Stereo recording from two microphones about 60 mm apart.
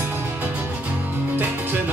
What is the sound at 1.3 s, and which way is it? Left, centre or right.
Music, right.